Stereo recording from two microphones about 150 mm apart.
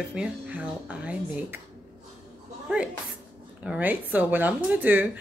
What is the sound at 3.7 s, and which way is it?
A woman's voice, 10° right (ahead or behind).